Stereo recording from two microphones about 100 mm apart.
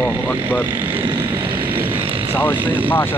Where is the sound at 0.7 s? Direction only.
20° right (ahead or behind).